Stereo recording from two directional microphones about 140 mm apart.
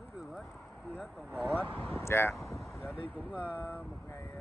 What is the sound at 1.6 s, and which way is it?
Speech, 15° left (ahead or behind).